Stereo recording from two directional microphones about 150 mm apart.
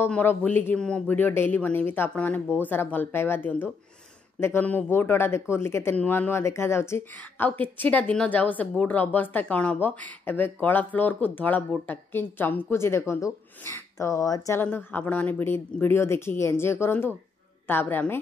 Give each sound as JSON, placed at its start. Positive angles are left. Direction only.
{"t": 0.0, "sound": "speech", "side_deg": 15}